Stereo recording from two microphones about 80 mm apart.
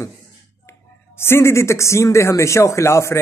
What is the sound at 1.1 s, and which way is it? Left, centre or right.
A man's voice, left.